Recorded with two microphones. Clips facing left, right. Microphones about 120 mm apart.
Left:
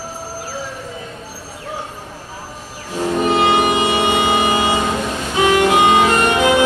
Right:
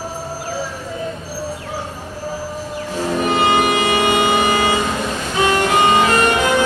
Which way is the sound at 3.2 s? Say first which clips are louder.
Left 1 dB; 20° left (ahead or behind).